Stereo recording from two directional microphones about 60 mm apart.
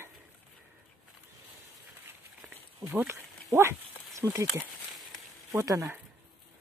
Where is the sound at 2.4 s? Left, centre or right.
Right.